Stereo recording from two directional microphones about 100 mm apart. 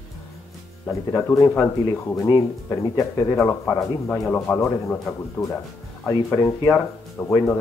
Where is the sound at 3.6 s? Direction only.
20° left (ahead or behind).